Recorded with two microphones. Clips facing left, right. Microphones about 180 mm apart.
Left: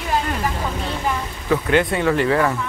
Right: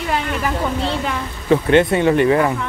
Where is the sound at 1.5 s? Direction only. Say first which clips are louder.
Right 5 dB; 25° right (ahead or behind).